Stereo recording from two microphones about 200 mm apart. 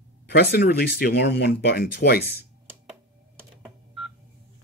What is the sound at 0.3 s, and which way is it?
Speech, 50° left (ahead or behind).